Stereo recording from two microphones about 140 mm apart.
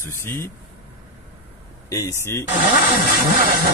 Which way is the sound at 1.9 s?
25° left (ahead or behind).